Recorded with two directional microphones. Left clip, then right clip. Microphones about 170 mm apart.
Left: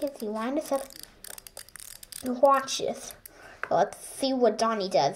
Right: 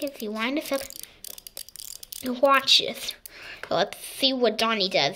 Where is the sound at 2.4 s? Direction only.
10° right (ahead or behind).